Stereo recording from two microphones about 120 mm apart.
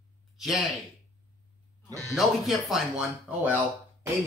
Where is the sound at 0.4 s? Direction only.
Centre (ahead or behind).